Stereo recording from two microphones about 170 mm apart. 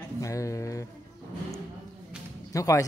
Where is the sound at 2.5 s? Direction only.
20° left (ahead or behind).